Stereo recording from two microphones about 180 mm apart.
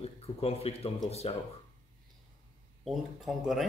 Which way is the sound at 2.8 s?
Centre (ahead or behind).